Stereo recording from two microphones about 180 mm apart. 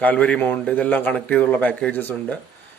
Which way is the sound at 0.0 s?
10° left (ahead or behind).